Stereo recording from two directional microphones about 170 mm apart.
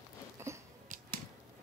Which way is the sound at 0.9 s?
45° right (ahead or behind).